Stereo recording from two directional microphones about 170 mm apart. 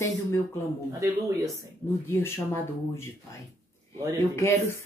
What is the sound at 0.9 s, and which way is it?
Speech, 20° right (ahead or behind).